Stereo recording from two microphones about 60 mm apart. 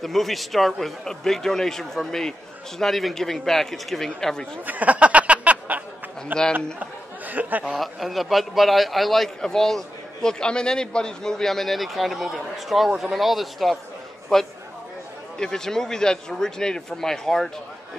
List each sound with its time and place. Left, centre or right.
0.0 s a man's voice: centre
4.6 s a sound: right
6.5 s speech: right
7.6 s a man's voice: centre